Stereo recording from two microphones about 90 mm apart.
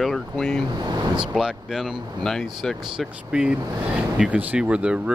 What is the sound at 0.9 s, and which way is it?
Speech, 50° right (ahead or behind).